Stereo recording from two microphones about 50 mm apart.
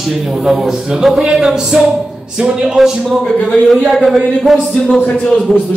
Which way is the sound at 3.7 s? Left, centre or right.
Centre.